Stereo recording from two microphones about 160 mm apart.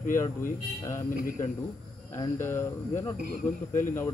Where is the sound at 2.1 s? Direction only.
15° left (ahead or behind).